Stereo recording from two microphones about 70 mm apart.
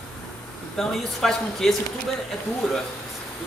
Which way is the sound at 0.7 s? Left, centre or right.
Centre.